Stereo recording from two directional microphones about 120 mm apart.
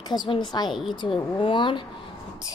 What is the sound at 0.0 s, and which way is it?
Speech, 35° left (ahead or behind).